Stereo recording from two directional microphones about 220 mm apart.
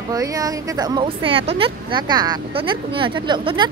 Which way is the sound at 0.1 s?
15° right (ahead or behind).